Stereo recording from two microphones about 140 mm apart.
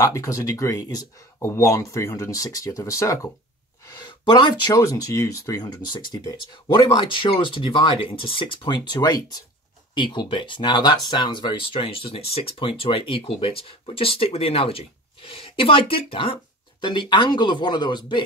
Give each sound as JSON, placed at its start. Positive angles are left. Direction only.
{"t": 0.0, "sound": "speech", "side_deg": 25}
{"t": 4.0, "sound": "speech", "side_deg": 35}